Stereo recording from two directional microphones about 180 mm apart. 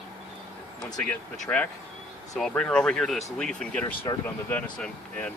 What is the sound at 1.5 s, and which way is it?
Speech, 15° left (ahead or behind).